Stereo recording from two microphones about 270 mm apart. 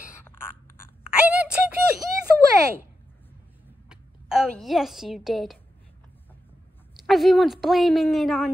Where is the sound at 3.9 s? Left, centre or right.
Centre.